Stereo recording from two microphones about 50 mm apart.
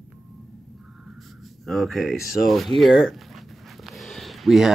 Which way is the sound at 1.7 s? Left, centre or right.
Centre.